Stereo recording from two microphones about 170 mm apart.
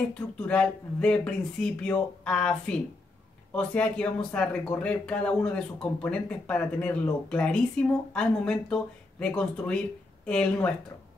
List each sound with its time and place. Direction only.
0.4 s speech: 5° left (ahead or behind)